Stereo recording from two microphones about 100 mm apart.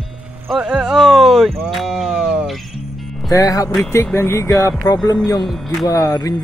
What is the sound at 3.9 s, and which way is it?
Speech, 25° left (ahead or behind).